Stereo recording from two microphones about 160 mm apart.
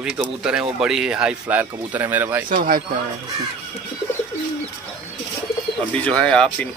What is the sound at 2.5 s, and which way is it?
Speech, 60° right (ahead or behind).